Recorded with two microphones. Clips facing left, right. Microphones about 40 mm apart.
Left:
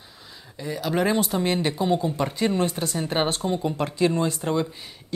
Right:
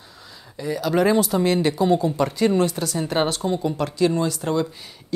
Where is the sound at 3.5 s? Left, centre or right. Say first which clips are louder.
Right 2 dB; left.